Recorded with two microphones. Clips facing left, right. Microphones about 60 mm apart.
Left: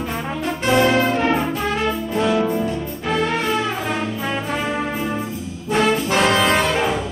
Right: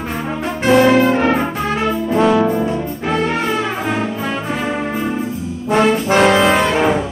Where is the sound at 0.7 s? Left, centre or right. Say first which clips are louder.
Right 5 dB; right.